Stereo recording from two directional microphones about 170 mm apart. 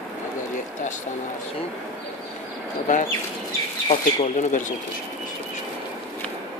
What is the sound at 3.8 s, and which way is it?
Speech, 40° left (ahead or behind).